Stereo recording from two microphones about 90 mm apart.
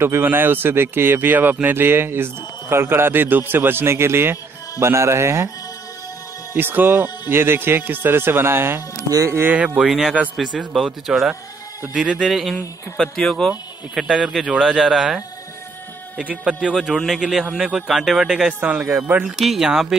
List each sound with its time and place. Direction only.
0.0 s speech: 25° right (ahead or behind)
6.5 s speech: 20° right (ahead or behind)
9.5 s speech: 15° right (ahead or behind)
9.8 s speech: 5° right (ahead or behind)
12.2 s speech: centre (ahead or behind)
16.7 s speech: centre (ahead or behind); by 19.2 s 20° right (ahead or behind)
19.2 s speech: centre (ahead or behind)